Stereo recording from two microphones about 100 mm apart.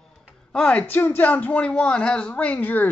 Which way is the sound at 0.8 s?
20° left (ahead or behind).